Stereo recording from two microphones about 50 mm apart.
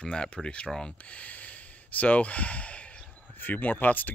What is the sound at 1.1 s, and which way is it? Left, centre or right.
Speech, left.